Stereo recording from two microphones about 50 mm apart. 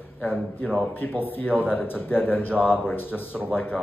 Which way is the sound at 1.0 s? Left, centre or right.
Left.